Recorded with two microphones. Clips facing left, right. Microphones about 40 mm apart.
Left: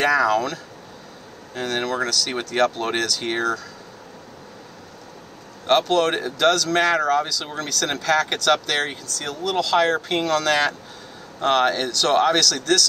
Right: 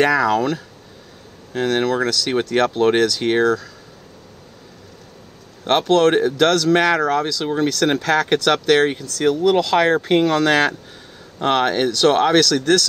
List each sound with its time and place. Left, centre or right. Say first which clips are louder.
0.2 s speech: right 2 dB; centre
5.7 s speech: right 4 dB; centre
8.8 s speech: right 11 dB; right